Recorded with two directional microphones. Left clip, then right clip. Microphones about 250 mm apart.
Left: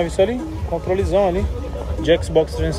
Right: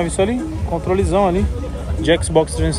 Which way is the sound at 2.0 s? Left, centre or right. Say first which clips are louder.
Right 1 dB; centre.